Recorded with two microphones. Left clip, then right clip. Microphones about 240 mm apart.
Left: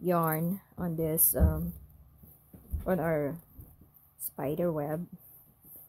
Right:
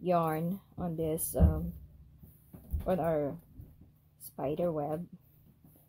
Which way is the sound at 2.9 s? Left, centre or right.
Left.